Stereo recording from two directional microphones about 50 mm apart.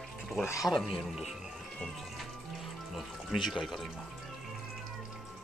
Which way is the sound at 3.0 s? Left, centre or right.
Centre.